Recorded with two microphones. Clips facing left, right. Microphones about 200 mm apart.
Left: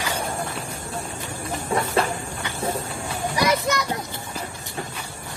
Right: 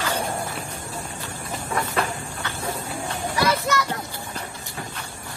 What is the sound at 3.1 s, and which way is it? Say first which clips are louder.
Children playing: left 1 dB; 15° left (ahead or behind).